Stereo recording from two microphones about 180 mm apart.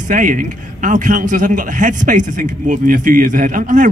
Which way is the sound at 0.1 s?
50° right (ahead or behind).